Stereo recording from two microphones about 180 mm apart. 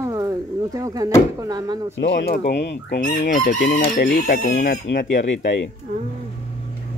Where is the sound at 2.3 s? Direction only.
65° left (ahead or behind).